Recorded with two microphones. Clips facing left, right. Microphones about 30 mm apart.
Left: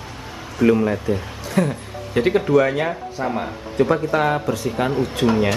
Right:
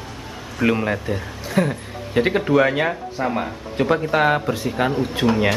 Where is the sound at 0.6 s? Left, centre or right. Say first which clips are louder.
Left 3 dB; right.